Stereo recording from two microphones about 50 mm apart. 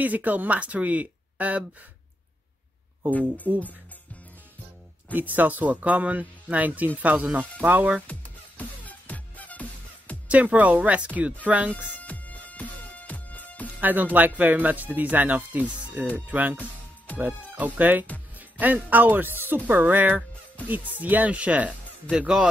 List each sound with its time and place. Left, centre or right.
0.0 s speech: right
3.1 s speech: left
5.1 s speech: right
8.1 s music: left
10.2 s speech: right
11.9 s music: left
13.7 s speech: right
17.6 s speech: right